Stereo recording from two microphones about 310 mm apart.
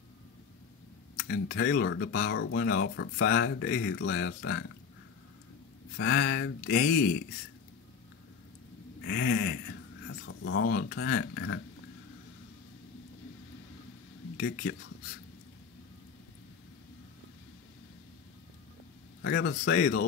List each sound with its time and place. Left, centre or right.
1.1 s speech: left
5.9 s speech: left
9.0 s speech: left
14.3 s speech: left
19.2 s speech: left